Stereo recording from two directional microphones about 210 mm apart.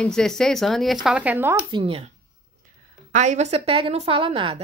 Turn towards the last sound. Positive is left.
turn(degrees=-25)  # may be behind; listen again after turning